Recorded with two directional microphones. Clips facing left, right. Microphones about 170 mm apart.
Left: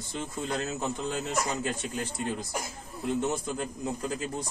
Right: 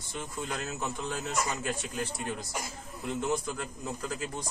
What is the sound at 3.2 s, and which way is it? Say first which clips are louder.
Speech: left 1 dB; 25° left (ahead or behind).